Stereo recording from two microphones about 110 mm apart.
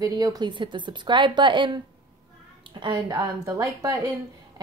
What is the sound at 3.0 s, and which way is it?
Speech, 30° right (ahead or behind).